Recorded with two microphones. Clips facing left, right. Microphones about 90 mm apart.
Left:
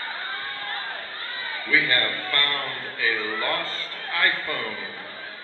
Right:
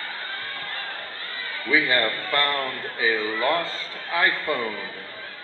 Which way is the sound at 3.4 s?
15° right (ahead or behind).